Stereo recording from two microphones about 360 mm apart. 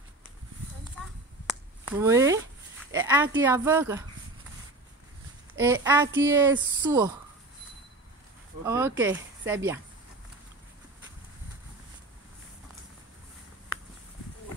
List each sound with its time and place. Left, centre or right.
1.5 s a sound: centre
2.9 s speech: centre
5.6 s speech: centre
8.6 s speech: centre